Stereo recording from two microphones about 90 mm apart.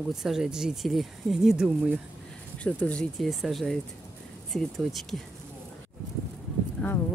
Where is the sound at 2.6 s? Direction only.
15° left (ahead or behind).